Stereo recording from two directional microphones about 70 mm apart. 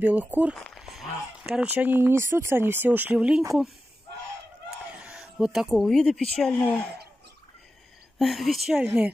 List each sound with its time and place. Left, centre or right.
0.0 s speech: right
0.7 s a sound: centre
1.6 s speech: right
5.2 s speech: centre
6.6 s a woman's voice: centre
8.2 s speech: centre
8.8 s speech: right